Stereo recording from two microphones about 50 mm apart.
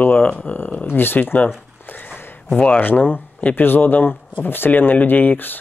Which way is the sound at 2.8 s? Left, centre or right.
Left.